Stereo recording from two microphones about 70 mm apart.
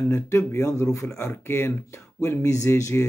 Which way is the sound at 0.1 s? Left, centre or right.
Left.